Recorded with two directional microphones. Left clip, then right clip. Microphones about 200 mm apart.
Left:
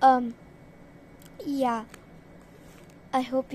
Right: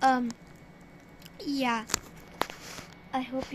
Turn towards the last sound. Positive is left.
turn(degrees=30)  # may be behind; listen again after turning